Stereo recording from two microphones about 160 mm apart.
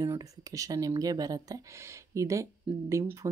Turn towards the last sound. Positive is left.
turn(degrees=-15)  # may be behind; listen again after turning